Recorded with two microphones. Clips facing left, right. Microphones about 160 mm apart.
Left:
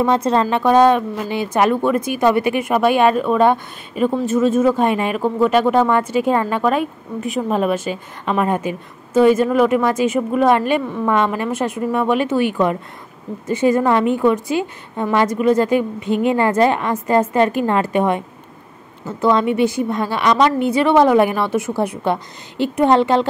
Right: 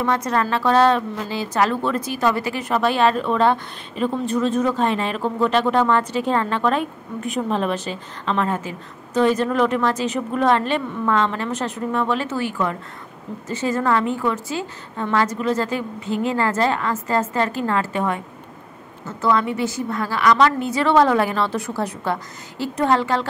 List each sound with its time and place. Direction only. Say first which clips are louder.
0.0 s a woman's voice: left 5 dB; 20° left (ahead or behind)